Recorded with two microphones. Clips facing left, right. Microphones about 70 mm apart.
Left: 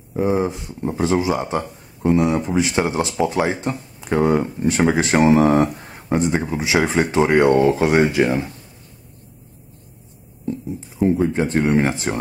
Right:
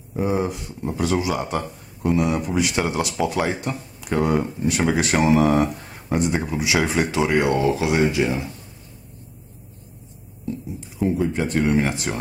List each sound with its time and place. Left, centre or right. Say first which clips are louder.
0.2 s speech: left 3 dB; centre
0.5 s speech: left 3 dB; left
11.0 s speech: left 4 dB; centre